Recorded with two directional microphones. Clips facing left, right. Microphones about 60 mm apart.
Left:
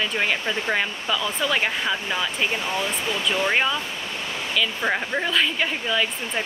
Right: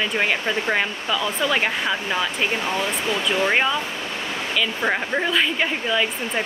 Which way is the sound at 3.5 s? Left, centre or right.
Centre.